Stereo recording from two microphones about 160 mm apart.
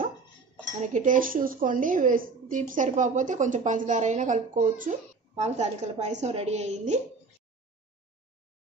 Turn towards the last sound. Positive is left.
turn(degrees=-45)  # may be behind; listen again after turning